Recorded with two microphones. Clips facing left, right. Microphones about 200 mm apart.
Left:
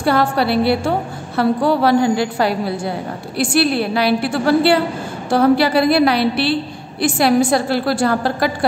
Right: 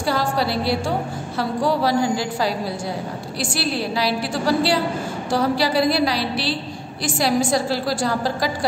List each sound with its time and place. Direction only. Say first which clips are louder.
0.0 s a woman's voice: left 5 dB; 60° left (ahead or behind)